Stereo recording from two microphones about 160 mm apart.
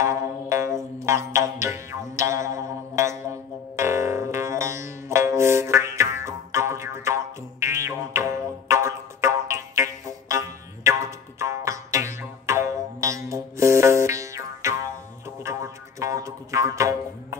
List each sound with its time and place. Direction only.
0.0 s music: 20° right (ahead or behind)